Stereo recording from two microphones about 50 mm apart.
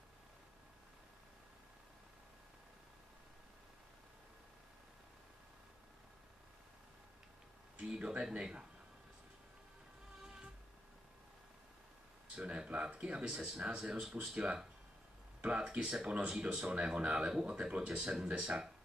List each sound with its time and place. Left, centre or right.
7.8 s speech: centre
12.4 s speech: right